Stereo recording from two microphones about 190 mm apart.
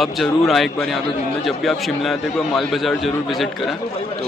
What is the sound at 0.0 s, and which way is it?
A man's voice, centre (ahead or behind).